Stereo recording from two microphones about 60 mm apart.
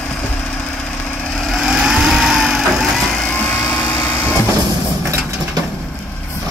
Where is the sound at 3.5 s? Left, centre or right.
Left.